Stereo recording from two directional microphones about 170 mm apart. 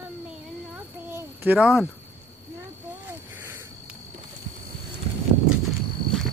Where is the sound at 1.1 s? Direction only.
10° right (ahead or behind).